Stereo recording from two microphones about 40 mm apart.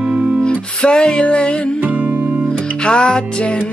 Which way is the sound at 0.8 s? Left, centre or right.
Centre.